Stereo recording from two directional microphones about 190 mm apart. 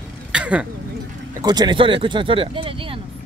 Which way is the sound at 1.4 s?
20° right (ahead or behind).